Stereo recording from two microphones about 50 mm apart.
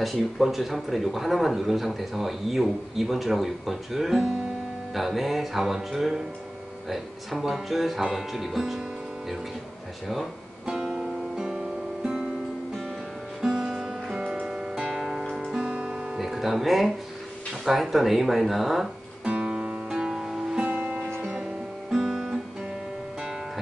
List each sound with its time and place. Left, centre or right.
0.0 s a man's voice: centre
10.6 s music: centre
13.6 s music: centre
14.2 s music: right
14.9 s music: centre
16.2 s music: centre
17.6 s a man's voice: centre
19.2 s music: centre
20.5 s music: right
21.9 s guitar: centre